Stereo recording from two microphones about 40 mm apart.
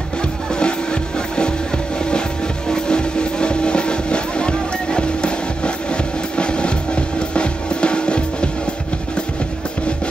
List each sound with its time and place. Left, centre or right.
0.5 s music: left
2.7 s music: left